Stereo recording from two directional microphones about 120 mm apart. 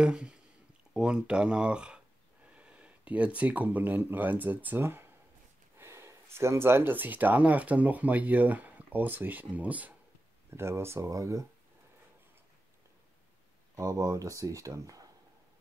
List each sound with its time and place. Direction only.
0.0 s speech: 5° right (ahead or behind); by 11.4 s 25° right (ahead or behind)
13.7 s speech: 30° right (ahead or behind)